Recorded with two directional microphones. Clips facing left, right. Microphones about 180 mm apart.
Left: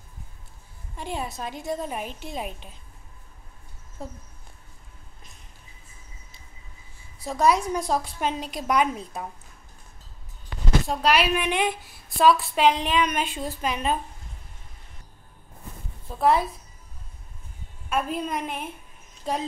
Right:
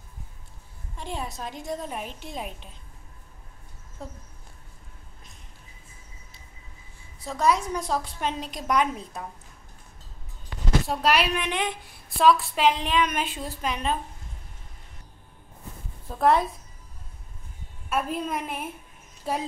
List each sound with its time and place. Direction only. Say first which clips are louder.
0.9 s a woman's voice: left 2 dB; 5° left (ahead or behind)
7.2 s a woman's voice: left 2 dB; 10° left (ahead or behind)
10.9 s a woman's voice: left 2 dB; centre (ahead or behind)
16.1 s a woman's voice: even; 5° left (ahead or behind)
17.8 s a woman's voice: left 1 dB; centre (ahead or behind)